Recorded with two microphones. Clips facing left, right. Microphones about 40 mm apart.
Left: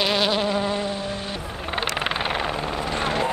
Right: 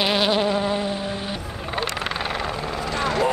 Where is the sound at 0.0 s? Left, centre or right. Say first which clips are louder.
Right 1 dB; centre.